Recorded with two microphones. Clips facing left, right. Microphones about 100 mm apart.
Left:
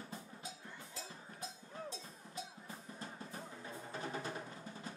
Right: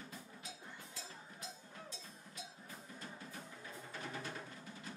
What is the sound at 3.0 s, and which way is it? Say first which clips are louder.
Music: left 3 dB; 30° left (ahead or behind).